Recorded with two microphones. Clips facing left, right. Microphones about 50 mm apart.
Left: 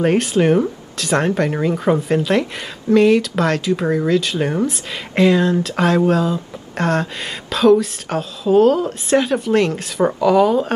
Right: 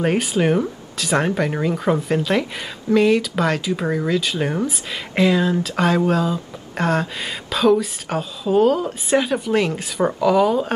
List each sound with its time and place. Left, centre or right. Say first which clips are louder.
0.0 s speech: left 3 dB; centre